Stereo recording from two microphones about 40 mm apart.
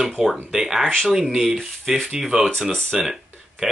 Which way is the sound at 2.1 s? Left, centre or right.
Centre.